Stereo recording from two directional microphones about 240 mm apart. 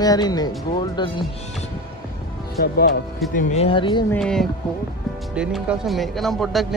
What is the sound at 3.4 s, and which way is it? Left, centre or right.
Speech, left.